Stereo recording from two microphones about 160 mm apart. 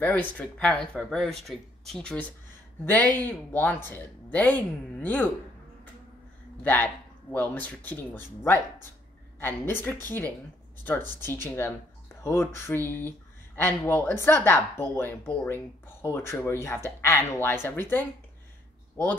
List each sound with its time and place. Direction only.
0.0 s speech: 10° left (ahead or behind)
6.6 s speech: 10° left (ahead or behind)